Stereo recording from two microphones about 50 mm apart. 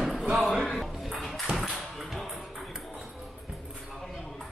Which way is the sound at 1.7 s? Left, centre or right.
Centre.